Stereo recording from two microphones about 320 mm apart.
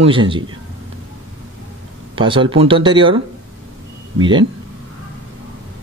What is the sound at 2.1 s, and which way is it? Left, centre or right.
Speech, centre.